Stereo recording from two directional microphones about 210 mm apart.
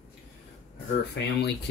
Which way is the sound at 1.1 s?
55° left (ahead or behind).